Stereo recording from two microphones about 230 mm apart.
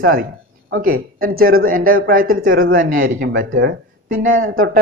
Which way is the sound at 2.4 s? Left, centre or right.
Right.